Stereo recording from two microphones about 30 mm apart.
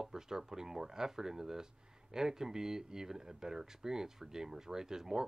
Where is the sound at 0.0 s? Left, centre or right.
Centre.